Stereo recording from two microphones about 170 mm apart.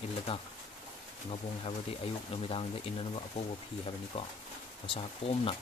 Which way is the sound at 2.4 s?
35° left (ahead or behind).